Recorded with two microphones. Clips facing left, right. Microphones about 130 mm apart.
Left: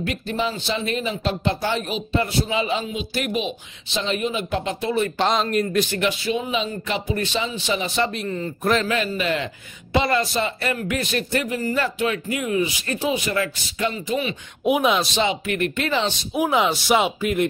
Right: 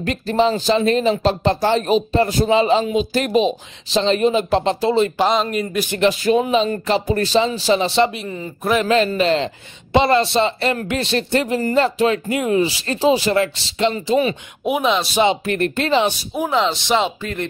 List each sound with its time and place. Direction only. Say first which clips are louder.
0.0 s speech: right 7 dB; 35° right (ahead or behind)
5.1 s speech: right 3 dB; 5° right (ahead or behind)
5.9 s speech: right 7 dB; 40° right (ahead or behind)
8.1 s a man's voice: left 1 dB; 10° right (ahead or behind)
8.8 s speech: right 7 dB; 30° right (ahead or behind)
14.6 s speech: even; centre (ahead or behind)
15.4 s speech: right 4 dB; 35° right (ahead or behind)
15.9 s a man's voice: right 6 dB; 15° right (ahead or behind)
16.3 s speech: even; 10° left (ahead or behind)